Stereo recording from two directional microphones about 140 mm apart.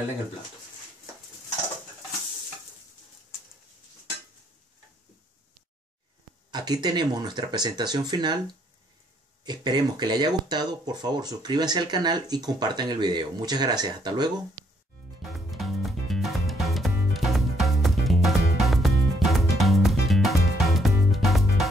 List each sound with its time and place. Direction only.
6.5 s speech: 30° right (ahead or behind)
9.4 s speech: 30° right (ahead or behind)
15.2 s music: centre (ahead or behind)